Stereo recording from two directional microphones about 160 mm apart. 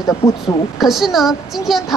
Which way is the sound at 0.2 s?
20° left (ahead or behind).